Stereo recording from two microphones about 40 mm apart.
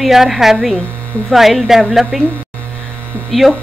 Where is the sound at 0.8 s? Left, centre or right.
Left.